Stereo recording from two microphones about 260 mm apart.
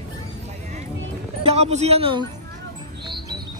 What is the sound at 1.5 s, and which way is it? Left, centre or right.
Speech, right.